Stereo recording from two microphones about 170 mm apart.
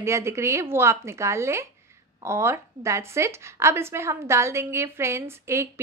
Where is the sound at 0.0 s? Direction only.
15° right (ahead or behind).